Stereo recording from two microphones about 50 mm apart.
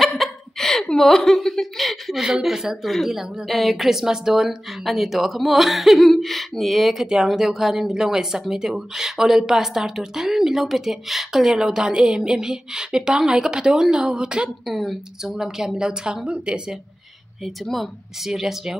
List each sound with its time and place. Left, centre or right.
0.0 s laughter: centre
2.2 s a woman's voice: centre
14.7 s a woman's voice: centre
18.2 s speech: centre